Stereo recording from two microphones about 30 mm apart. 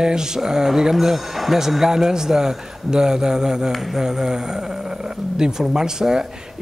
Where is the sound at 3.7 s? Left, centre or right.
Centre.